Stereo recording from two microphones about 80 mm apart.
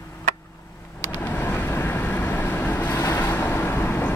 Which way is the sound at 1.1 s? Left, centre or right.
Left.